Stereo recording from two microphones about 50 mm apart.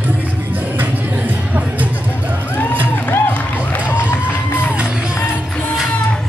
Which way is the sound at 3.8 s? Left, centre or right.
Right.